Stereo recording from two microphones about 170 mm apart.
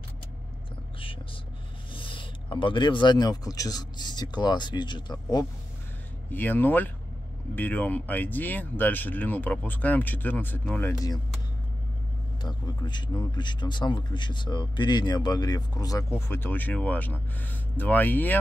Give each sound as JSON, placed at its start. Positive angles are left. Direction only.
{"t": 2.0, "sound": "speech", "side_deg": 30}
{"t": 6.3, "sound": "speech", "side_deg": 10}
{"t": 12.4, "sound": "speech", "side_deg": 25}